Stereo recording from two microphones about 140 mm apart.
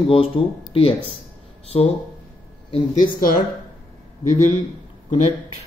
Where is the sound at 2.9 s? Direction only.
75° left (ahead or behind).